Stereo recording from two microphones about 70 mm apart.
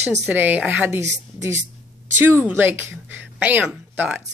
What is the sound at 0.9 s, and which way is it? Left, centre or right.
Speech, right.